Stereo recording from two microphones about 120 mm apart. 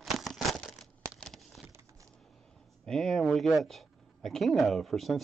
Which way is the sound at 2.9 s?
Centre (ahead or behind).